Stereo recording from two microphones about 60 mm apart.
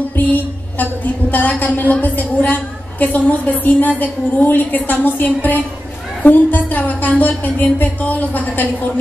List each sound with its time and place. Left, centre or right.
0.1 s a woman's voice: left